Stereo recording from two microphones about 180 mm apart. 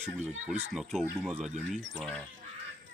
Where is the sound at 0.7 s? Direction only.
Centre (ahead or behind).